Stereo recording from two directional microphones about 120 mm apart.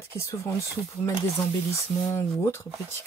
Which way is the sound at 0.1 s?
20° left (ahead or behind).